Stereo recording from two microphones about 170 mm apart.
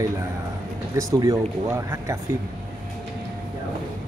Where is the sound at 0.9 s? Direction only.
20° right (ahead or behind).